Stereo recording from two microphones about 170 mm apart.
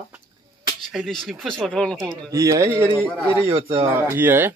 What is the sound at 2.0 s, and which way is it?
Speech, 20° right (ahead or behind).